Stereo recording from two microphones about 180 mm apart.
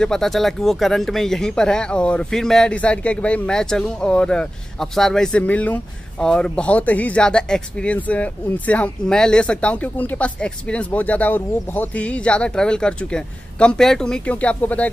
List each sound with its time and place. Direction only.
0.0 s speech: 5° left (ahead or behind)